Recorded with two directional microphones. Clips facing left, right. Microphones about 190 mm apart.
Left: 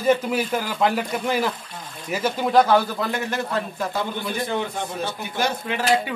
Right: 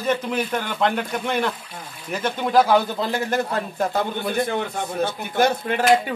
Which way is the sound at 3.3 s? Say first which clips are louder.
Right 2 dB; 50° right (ahead or behind).